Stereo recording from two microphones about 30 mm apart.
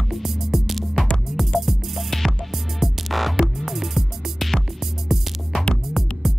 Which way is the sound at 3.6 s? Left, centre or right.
Centre.